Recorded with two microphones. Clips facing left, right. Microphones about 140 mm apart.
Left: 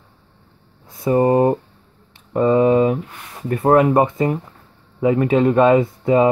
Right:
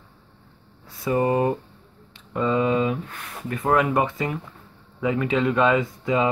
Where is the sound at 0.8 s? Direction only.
25° left (ahead or behind).